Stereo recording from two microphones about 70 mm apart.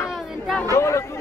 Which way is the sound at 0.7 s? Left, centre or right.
Left.